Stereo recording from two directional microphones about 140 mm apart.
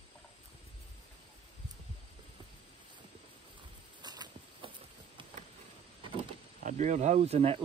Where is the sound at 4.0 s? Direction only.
30° right (ahead or behind).